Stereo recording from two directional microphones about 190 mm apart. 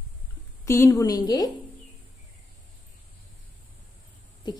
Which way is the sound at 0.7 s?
15° left (ahead or behind).